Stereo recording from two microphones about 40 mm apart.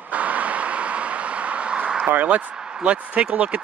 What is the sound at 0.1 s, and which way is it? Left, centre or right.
Vehicle, right.